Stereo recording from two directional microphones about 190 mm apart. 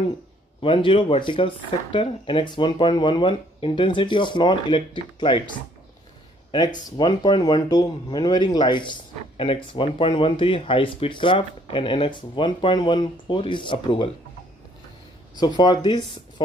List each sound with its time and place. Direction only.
0.6 s speech: 25° left (ahead or behind)
15.3 s speech: 20° left (ahead or behind)